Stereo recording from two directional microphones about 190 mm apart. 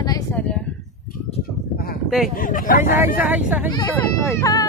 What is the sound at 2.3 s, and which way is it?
Speech, 45° left (ahead or behind).